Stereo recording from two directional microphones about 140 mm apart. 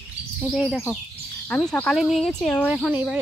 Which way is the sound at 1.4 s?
10° left (ahead or behind).